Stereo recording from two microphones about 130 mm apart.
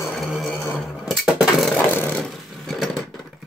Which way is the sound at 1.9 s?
15° left (ahead or behind).